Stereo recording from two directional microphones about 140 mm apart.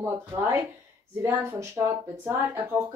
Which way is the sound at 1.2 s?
20° right (ahead or behind).